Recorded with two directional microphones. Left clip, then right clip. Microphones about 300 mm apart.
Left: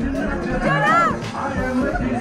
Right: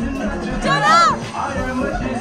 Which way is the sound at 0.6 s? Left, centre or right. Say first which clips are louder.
Right 4 dB; centre.